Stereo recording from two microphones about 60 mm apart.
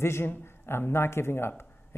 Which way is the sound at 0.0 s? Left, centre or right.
Left.